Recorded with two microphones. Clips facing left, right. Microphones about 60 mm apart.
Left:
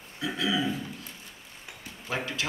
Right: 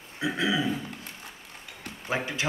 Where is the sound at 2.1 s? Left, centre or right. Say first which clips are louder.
Right 2 dB; right.